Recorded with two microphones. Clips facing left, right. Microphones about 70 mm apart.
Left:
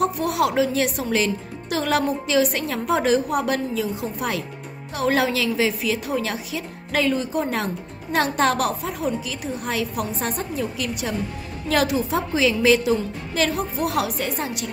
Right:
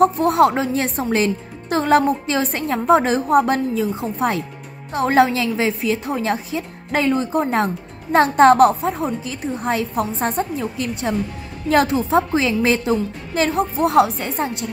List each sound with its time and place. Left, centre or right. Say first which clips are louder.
0.0 s speech: right 7 dB; right